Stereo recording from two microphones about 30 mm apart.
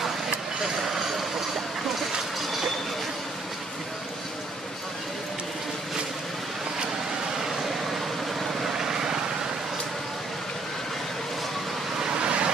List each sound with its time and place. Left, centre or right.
8.4 s vehicle: centre
12.1 s vehicle: right